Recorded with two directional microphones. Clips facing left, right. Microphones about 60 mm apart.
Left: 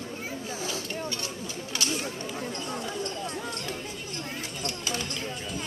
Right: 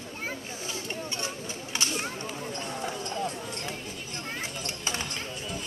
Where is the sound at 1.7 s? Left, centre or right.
Right.